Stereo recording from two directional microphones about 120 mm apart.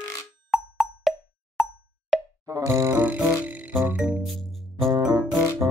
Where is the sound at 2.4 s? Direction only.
25° right (ahead or behind); by 4.8 s centre (ahead or behind).